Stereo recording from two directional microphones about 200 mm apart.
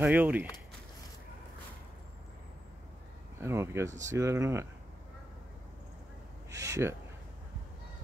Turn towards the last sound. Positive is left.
turn(degrees=-15)  # may be behind; listen again after turning